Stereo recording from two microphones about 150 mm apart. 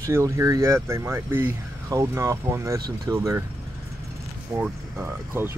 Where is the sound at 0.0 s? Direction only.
20° right (ahead or behind).